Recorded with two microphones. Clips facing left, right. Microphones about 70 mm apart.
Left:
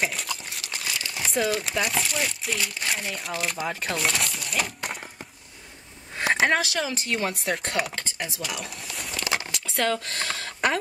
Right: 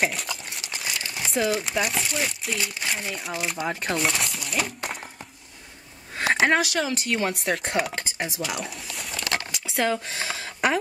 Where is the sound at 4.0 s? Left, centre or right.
Centre.